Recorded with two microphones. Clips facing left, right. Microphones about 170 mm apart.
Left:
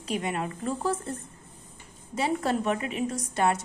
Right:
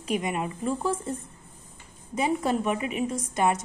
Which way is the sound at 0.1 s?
10° right (ahead or behind).